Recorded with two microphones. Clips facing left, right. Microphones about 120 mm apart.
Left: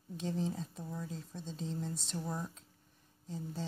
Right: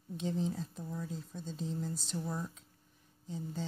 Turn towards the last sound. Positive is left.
turn(degrees=0)  # may be behind; listen again after turning